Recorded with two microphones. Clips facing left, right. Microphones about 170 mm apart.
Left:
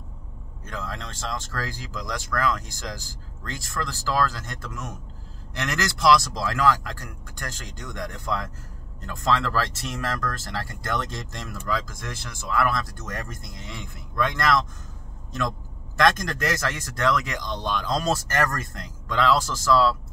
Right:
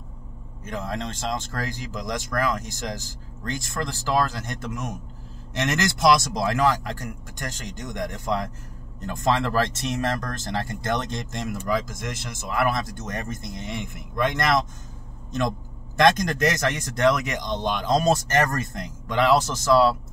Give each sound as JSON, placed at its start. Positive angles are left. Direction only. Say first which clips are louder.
{"t": 0.7, "sound": "speech", "louder": "right 5 dB", "side_deg": -20}
{"t": 16.0, "sound": "speech", "louder": "right 3 dB", "side_deg": -20}